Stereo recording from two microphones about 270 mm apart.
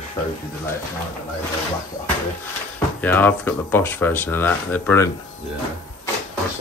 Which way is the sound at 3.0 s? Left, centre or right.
Centre.